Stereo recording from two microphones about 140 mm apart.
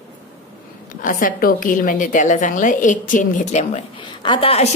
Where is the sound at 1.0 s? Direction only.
75° left (ahead or behind); by 3.8 s 60° left (ahead or behind).